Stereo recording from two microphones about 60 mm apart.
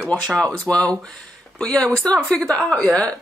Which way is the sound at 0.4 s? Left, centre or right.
Centre.